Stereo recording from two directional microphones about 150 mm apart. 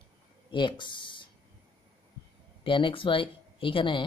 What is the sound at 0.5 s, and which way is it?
Speech, 30° left (ahead or behind).